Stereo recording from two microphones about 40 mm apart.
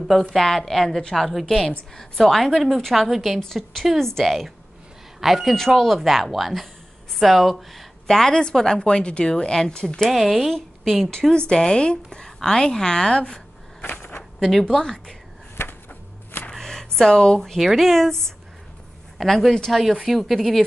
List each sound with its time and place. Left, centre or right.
0.3 s a woman's voice: centre
8.1 s a woman's voice: centre
10.0 s a woman's voice: centre
11.1 s a woman's voice: centre
14.4 s a woman's voice: centre
14.8 s speech: centre
16.6 s a sound: centre
17.6 s a woman's voice: centre